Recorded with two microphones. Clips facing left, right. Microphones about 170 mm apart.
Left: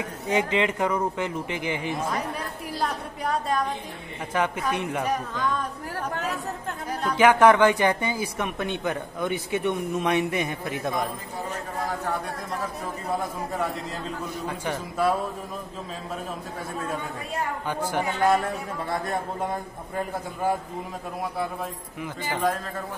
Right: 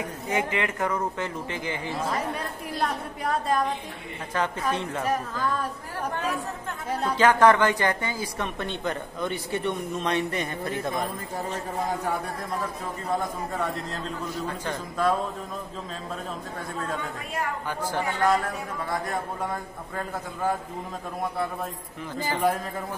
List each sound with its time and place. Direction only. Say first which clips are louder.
0.3 s speech: left 4 dB; 20° left (ahead or behind)
2.8 s a woman's voice: even; centre (ahead or behind)
4.3 s speech: left 1 dB; 10° left (ahead or behind)
5.0 s a woman's voice: even; 5° right (ahead or behind)
6.9 s speech: right 1 dB; 25° right (ahead or behind)
7.2 s speech: left 2 dB; 10° left (ahead or behind)
13.5 s a woman's voice: left 1 dB; centre (ahead or behind)
17.6 s a man's voice: left 2 dB; 20° left (ahead or behind)